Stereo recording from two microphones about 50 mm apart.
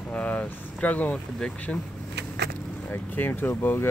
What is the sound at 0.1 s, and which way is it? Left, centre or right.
Speech, left.